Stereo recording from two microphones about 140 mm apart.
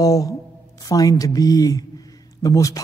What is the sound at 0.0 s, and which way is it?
A man's voice, 25° left (ahead or behind).